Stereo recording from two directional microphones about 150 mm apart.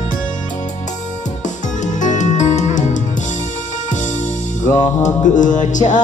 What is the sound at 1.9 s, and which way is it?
Music, 55° left (ahead or behind).